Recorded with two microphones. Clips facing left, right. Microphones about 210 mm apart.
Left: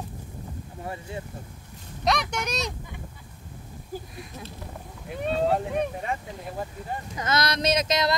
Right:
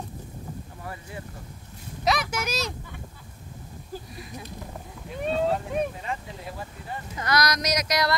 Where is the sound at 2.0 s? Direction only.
5° right (ahead or behind).